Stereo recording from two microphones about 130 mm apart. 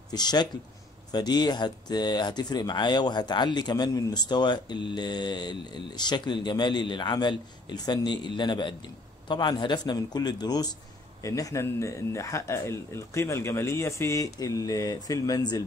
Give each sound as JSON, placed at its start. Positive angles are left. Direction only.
{"t": 0.1, "sound": "speech", "side_deg": 35}